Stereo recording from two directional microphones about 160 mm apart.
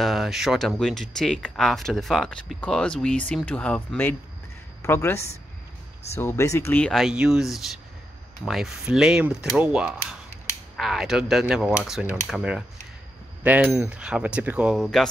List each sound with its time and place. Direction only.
0.0 s speech: centre (ahead or behind)
6.9 s speech: centre (ahead or behind)